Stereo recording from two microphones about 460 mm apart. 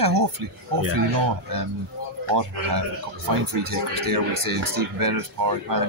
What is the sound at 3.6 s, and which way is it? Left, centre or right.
Speech, right.